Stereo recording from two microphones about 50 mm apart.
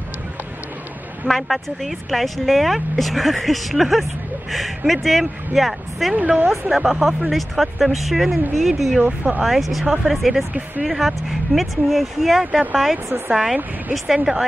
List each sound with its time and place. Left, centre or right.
1.2 s speech: centre
6.1 s speech: right
6.7 s speech: centre
9.0 s speech: right
9.4 s speech: centre